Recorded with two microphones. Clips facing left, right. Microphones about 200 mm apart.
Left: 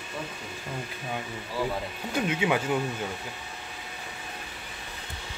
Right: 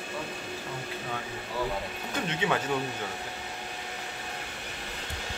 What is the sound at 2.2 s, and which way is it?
Speech, 10° left (ahead or behind).